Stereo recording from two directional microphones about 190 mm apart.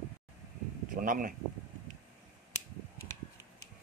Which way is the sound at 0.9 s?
45° right (ahead or behind).